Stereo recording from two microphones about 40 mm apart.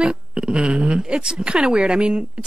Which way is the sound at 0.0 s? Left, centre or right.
Right.